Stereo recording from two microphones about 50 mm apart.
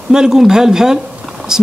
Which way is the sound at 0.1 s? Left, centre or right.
Centre.